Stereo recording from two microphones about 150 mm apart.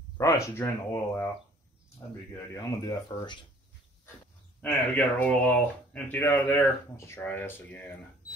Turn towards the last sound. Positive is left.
turn(degrees=15)  # may be behind; listen again after turning